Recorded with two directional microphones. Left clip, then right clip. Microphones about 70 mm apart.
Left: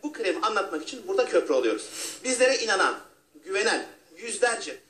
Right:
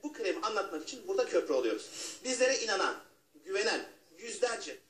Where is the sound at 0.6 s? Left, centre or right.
Centre.